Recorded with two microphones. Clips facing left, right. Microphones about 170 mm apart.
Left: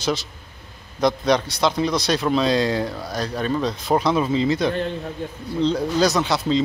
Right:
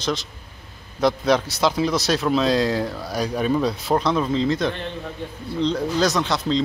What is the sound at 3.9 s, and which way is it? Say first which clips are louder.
Speech: left 2 dB; 5° left (ahead or behind).